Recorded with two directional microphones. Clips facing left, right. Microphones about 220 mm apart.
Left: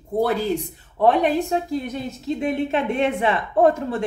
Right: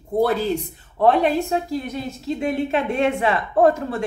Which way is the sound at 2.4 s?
20° left (ahead or behind).